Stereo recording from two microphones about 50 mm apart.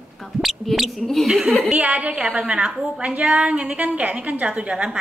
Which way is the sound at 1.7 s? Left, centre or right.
Right.